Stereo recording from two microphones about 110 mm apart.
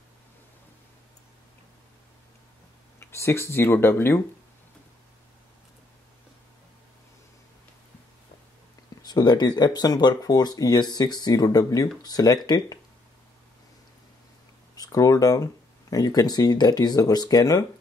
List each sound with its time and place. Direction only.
3.0 s speech: 25° left (ahead or behind)
9.0 s speech: 40° left (ahead or behind)
14.8 s speech: 35° left (ahead or behind)